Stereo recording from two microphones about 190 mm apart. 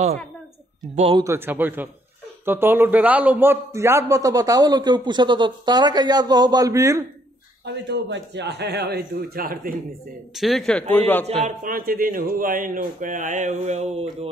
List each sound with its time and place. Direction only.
0.9 s speech: 30° right (ahead or behind)
1.2 s a man's voice: 10° right (ahead or behind)
7.6 s a man's voice: 65° right (ahead or behind); by 9.6 s 50° right (ahead or behind)
10.3 s speech: centre (ahead or behind)
11.2 s a man's voice: 45° right (ahead or behind)